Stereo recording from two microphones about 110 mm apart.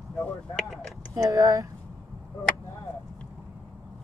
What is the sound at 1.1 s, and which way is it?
Speech, 30° right (ahead or behind).